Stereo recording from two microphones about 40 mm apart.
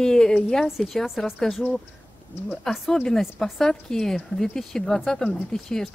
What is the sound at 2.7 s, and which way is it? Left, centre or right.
A woman's voice, centre.